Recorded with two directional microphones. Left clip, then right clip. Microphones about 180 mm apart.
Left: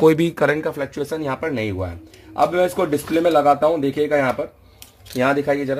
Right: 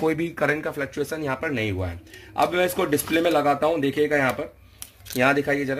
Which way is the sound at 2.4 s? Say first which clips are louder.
Left 4 dB; centre (ahead or behind).